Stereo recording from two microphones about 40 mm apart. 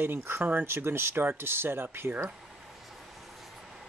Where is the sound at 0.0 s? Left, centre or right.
Right.